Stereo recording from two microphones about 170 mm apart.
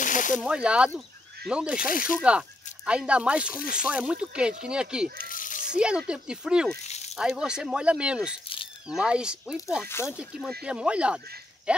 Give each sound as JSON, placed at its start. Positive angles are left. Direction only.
{"t": 0.0, "sound": "a sound", "side_deg": 50}
{"t": 0.4, "sound": "speech", "side_deg": -5}
{"t": 1.8, "sound": "speech", "side_deg": 55}
{"t": 2.2, "sound": "speech", "side_deg": -5}
{"t": 3.5, "sound": "speech", "side_deg": 55}
{"t": 3.8, "sound": "speech", "side_deg": -5}
{"t": 5.3, "sound": "a sound", "side_deg": 50}
{"t": 5.7, "sound": "speech", "side_deg": -5}
{"t": 6.8, "sound": "a sound", "side_deg": 40}
{"t": 7.2, "sound": "speech", "side_deg": -5}